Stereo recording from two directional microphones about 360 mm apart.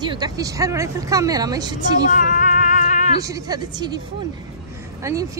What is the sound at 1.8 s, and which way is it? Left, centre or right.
Female singing, left.